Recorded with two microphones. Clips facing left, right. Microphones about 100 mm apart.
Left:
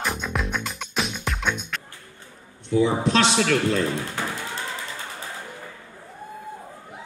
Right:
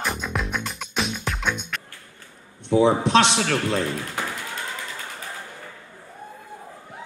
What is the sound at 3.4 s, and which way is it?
Speech, 40° right (ahead or behind).